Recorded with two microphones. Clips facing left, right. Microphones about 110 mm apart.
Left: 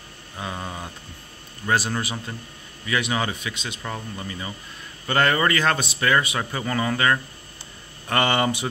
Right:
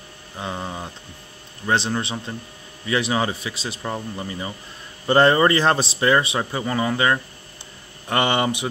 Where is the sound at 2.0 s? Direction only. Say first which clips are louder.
Right 2 dB; 25° right (ahead or behind).